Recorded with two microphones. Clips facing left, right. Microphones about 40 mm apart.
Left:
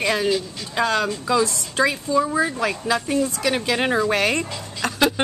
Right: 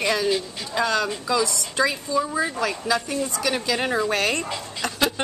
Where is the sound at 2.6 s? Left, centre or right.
Left.